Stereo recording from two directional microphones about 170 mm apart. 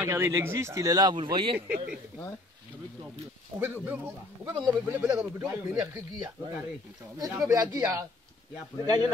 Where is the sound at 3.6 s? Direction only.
10° right (ahead or behind).